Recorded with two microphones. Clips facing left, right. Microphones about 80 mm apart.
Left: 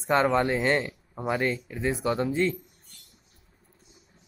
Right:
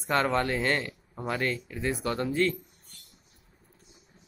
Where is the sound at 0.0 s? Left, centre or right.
Centre.